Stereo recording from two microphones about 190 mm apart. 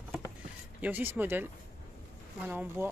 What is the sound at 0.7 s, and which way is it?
Speech, 10° right (ahead or behind).